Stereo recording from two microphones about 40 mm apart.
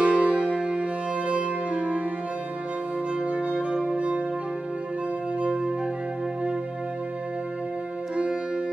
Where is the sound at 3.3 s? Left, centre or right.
Right.